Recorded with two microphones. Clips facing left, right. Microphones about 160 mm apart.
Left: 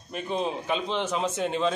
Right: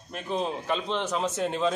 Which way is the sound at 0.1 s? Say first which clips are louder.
Left 1 dB; centre (ahead or behind).